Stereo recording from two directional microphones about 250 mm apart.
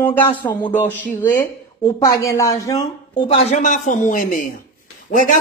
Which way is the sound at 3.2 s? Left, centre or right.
Left.